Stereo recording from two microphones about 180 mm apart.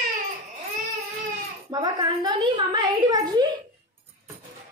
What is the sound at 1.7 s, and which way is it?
Speech, 25° right (ahead or behind).